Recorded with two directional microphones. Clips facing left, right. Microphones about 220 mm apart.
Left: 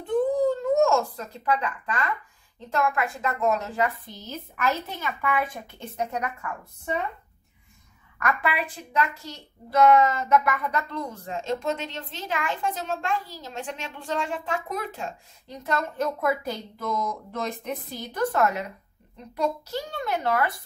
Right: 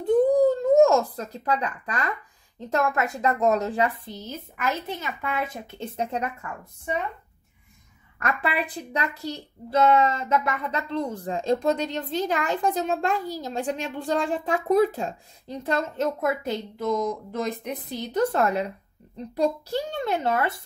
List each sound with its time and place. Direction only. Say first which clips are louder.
0.0 s a sound: right 4 dB; 40° right (ahead or behind)
2.7 s a child's voice: right 1 dB; 40° right (ahead or behind)
8.2 s a child's voice: even; 35° right (ahead or behind); by 18.0 s 15° right (ahead or behind)
18.1 s speech: right 2 dB; 25° right (ahead or behind)